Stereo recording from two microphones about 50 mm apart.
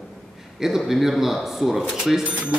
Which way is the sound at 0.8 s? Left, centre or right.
Centre.